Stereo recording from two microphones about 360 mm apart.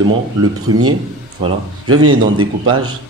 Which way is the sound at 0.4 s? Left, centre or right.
Right.